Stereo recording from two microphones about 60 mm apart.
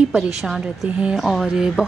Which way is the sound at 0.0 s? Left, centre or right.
Centre.